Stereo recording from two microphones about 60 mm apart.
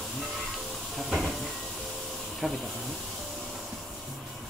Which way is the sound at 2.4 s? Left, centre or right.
Centre.